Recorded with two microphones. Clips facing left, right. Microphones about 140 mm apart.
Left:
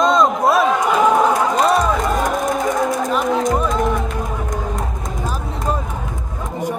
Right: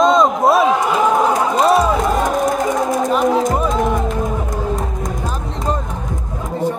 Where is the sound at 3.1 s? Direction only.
Centre (ahead or behind).